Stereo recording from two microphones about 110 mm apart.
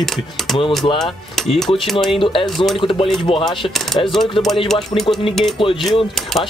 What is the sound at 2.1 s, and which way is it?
Mechanisms, 50° left (ahead or behind).